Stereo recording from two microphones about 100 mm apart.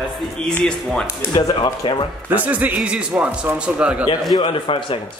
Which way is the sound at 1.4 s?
45° left (ahead or behind).